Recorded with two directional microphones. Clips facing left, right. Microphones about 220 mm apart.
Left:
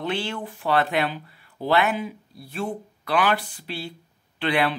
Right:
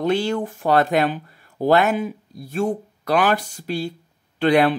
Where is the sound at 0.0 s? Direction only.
40° right (ahead or behind).